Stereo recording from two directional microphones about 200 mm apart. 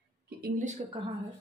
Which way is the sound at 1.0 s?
25° right (ahead or behind).